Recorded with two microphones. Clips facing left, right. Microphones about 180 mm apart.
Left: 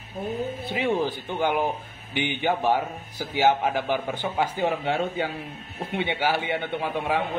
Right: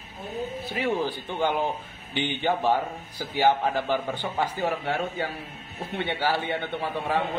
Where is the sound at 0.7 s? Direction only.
20° left (ahead or behind).